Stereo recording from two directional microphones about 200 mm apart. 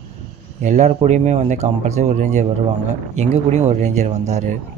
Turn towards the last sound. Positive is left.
turn(degrees=-35)  # may be behind; listen again after turning